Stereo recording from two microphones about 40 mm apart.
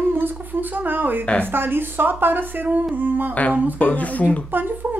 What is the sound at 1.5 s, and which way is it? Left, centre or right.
Speech, right.